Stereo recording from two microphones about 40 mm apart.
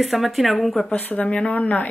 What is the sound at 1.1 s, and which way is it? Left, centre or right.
Speech, left.